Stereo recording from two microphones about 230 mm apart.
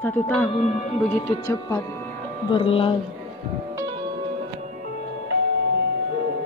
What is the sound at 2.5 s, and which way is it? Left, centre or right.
Speech, left.